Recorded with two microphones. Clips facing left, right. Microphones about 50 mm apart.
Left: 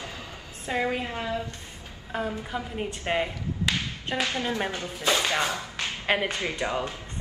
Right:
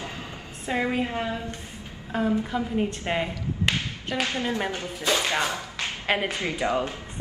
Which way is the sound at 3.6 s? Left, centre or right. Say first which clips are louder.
Right 2 dB; right.